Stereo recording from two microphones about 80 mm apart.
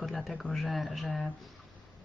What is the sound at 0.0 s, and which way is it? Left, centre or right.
A man's voice, centre.